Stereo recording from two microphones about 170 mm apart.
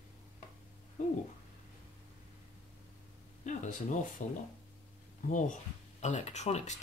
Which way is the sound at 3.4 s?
45° left (ahead or behind).